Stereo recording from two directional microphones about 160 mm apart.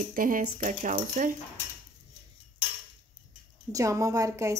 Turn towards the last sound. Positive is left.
turn(degrees=-20)  # may be behind; listen again after turning